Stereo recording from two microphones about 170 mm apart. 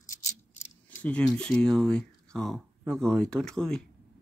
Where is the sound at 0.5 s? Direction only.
5° left (ahead or behind).